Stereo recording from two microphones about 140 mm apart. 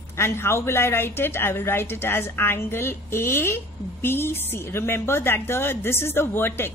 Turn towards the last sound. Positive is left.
turn(degrees=15)  # may be behind; listen again after turning